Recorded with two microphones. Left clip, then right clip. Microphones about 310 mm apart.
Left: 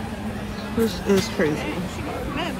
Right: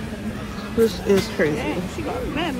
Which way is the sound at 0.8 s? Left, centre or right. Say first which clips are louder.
Left 1 dB; centre.